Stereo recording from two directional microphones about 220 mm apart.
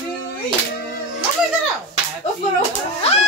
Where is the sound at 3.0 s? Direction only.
30° left (ahead or behind).